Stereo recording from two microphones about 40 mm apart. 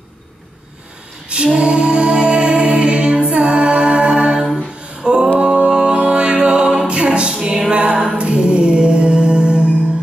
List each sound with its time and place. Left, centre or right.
1.5 s music: right
5.0 s a sound: centre
5.4 s music: right
7.7 s music: right